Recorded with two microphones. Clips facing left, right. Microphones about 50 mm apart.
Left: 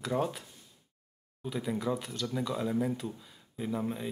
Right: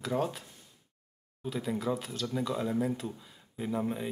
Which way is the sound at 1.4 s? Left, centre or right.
Centre.